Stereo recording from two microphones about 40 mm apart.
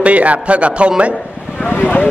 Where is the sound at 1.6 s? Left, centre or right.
Left.